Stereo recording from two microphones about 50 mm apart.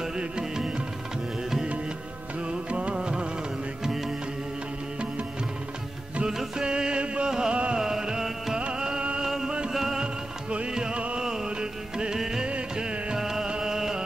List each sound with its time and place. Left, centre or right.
0.0 s music: centre
2.4 s music: right
3.8 s music: centre
6.3 s music: centre
9.2 s music: centre
9.5 s music: centre
9.8 s music: centre